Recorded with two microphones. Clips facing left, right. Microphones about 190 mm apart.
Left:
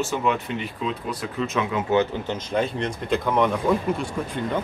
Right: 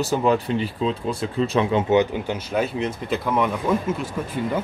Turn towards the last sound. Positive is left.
turn(degrees=-5)  # may be behind; listen again after turning